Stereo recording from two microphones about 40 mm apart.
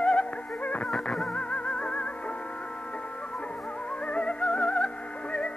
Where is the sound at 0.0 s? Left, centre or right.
Left.